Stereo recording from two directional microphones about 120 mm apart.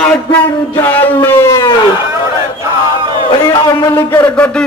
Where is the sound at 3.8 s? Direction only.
20° left (ahead or behind).